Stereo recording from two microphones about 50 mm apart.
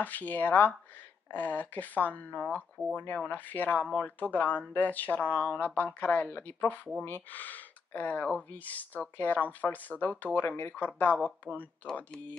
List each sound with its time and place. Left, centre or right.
0.0 s speech: left